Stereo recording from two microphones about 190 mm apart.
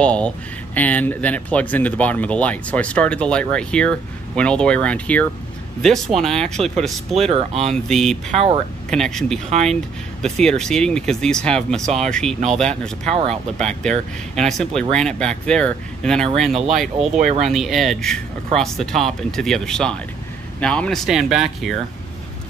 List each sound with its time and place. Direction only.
0.0 s speech: 5° left (ahead or behind)
7.2 s speech: 30° right (ahead or behind)
7.7 s speech: centre (ahead or behind)
8.3 s speech: 35° right (ahead or behind)
8.9 s speech: centre (ahead or behind)